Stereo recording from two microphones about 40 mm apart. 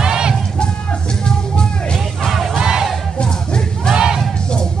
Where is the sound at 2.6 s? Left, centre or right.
Centre.